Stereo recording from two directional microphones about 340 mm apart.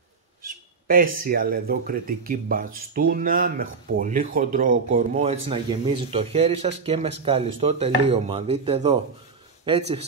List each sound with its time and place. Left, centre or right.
0.9 s speech: right